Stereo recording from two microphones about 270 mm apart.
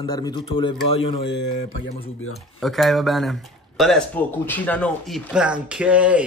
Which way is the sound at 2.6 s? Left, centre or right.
Centre.